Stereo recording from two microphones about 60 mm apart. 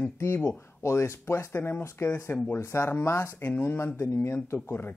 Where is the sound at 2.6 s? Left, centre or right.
Left.